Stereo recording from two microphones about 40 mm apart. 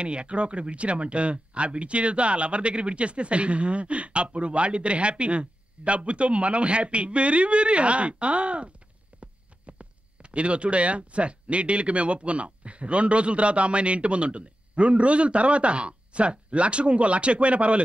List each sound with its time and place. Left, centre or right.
0.0 s speech: right